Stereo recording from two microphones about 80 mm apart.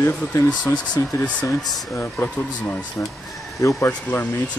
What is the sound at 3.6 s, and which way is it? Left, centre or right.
Speech, left.